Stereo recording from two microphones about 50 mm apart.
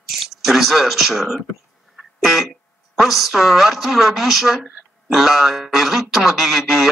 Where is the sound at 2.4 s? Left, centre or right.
Centre.